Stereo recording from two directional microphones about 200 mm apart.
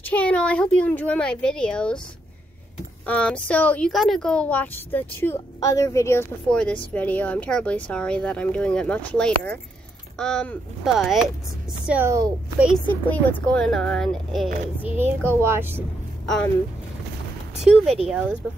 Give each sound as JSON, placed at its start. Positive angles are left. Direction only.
{"t": 0.0, "sound": "speech", "side_deg": 5}
{"t": 3.1, "sound": "a child's voice", "side_deg": 5}
{"t": 12.8, "sound": "speech", "side_deg": 10}
{"t": 14.8, "sound": "a child's voice", "side_deg": -10}
{"t": 17.8, "sound": "speech", "side_deg": -30}